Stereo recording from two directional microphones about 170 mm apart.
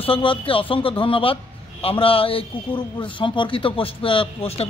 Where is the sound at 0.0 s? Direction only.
30° left (ahead or behind).